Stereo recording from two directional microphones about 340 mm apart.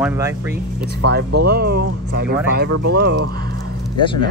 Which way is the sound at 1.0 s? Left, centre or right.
Right.